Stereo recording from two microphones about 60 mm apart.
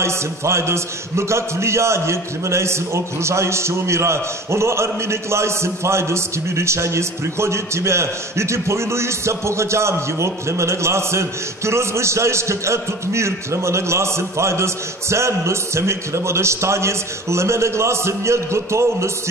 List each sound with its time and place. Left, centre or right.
0.0 s a man's voice: right